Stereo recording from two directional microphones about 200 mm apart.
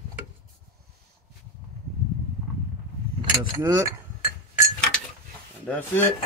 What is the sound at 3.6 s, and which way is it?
Speech, 15° right (ahead or behind).